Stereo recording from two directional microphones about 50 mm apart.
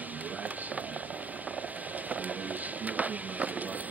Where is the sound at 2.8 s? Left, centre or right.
Right.